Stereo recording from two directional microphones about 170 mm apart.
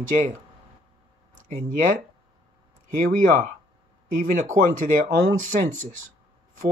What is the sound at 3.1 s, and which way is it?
Speech, 50° right (ahead or behind).